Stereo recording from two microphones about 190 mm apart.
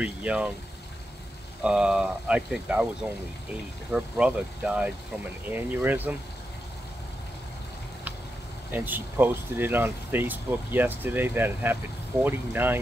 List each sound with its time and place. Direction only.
0.0 s speech: 5° right (ahead or behind)
1.6 s speech: 5° right (ahead or behind)
8.7 s speech: 10° right (ahead or behind)